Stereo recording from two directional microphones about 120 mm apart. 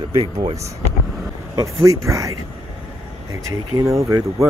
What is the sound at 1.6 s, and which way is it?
Speech, 25° right (ahead or behind).